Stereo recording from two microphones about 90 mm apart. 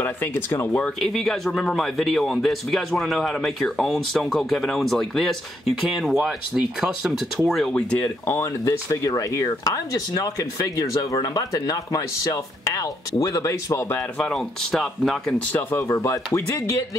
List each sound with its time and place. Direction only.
0.0 s speech: 25° left (ahead or behind)
1.0 s speech: 5° left (ahead or behind)
7.7 s speech: 15° left (ahead or behind)
8.3 s speech: 35° left (ahead or behind)
14.1 s speech: 10° left (ahead or behind)
15.5 s speech: 30° left (ahead or behind)